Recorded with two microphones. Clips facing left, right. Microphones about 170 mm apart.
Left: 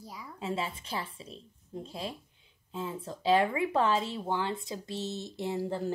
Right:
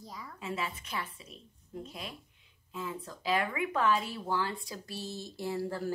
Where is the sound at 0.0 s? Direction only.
10° left (ahead or behind).